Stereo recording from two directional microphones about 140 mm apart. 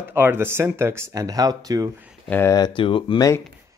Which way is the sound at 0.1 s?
15° right (ahead or behind).